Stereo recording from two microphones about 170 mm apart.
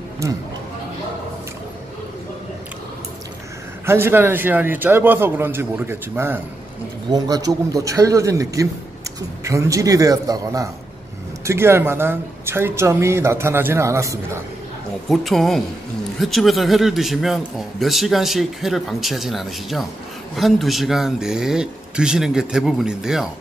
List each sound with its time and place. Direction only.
3.8 s a man's voice: 15° right (ahead or behind)
15.0 s a man's voice: centre (ahead or behind)